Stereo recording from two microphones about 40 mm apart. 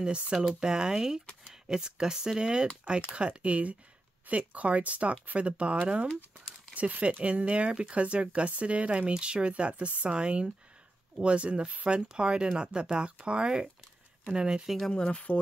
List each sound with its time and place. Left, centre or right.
0.0 s speech: right
14.9 s speech: left